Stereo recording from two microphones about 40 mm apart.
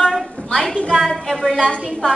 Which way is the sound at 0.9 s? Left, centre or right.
Centre.